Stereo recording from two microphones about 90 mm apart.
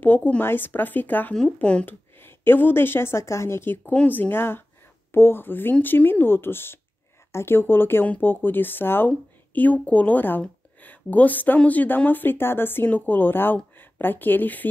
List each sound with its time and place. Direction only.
0.0 s speech: 20° left (ahead or behind)
2.1 s speech: 25° left (ahead or behind)